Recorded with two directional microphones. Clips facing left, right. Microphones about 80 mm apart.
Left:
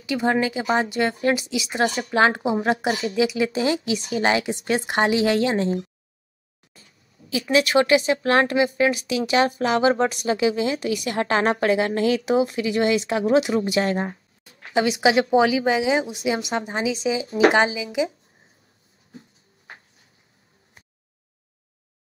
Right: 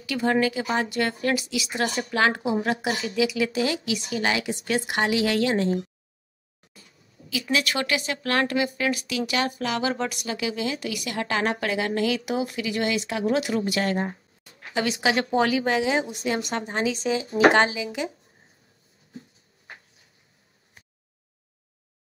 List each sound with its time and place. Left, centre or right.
0.0 s a woman's voice: left
7.5 s a woman's voice: left
13.7 s a woman's voice: left
15.3 s a woman's voice: centre